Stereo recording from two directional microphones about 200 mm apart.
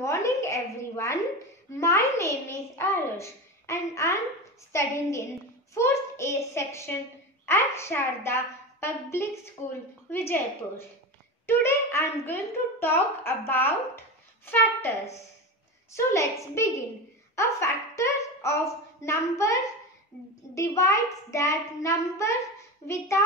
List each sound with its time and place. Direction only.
0.0 s a woman's voice: 15° left (ahead or behind)
11.4 s a woman's voice: 10° left (ahead or behind)
15.9 s a woman's voice: 15° left (ahead or behind)